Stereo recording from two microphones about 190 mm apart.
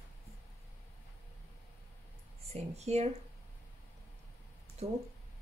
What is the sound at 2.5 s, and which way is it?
Speech, 35° right (ahead or behind).